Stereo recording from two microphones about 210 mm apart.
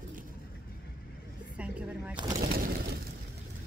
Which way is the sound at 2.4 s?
45° right (ahead or behind).